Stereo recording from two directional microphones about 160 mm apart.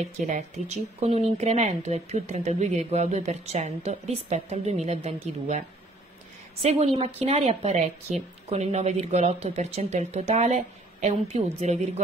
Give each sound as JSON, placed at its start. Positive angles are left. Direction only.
{"t": 0.0, "sound": "a woman's voice", "side_deg": -45}
{"t": 7.0, "sound": "a woman's voice", "side_deg": -40}